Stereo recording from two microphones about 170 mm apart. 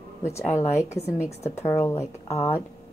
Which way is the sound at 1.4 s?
40° left (ahead or behind).